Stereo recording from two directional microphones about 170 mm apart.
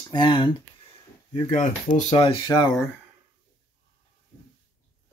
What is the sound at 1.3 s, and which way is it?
Speech, 45° left (ahead or behind).